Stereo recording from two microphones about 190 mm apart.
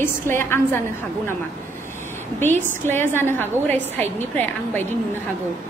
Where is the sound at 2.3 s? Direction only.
10° left (ahead or behind).